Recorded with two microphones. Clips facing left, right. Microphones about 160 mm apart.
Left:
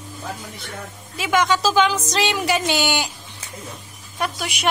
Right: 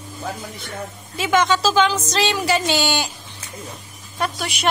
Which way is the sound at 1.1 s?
10° left (ahead or behind).